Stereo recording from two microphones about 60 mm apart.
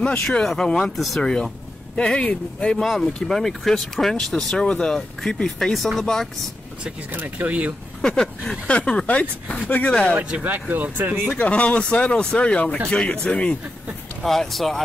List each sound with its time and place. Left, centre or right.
0.4 s speech: centre
0.9 s speech: centre
1.2 s speech: centre
2.8 s speech: centre
7.1 s speech: right
8.0 s speech: centre
10.3 s speech: right
11.3 s speech: left
14.2 s speech: centre